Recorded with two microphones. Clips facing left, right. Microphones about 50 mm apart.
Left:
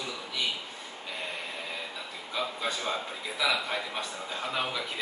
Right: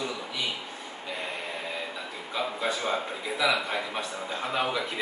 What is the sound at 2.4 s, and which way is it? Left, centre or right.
A man's voice, centre.